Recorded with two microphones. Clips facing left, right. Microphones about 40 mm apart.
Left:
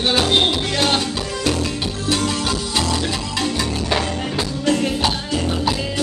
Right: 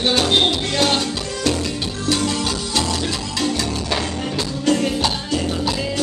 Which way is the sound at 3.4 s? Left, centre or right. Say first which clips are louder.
Right 1 dB; centre.